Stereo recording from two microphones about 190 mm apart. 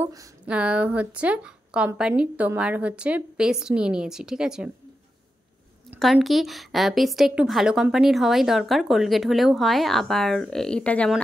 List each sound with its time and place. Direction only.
0.0 s a sound: 15° right (ahead or behind)
0.5 s a woman's voice: 5° right (ahead or behind)
5.9 s a woman's voice: centre (ahead or behind)